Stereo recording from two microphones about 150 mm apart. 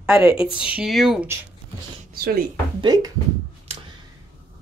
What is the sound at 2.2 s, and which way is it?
Speech, 90° right.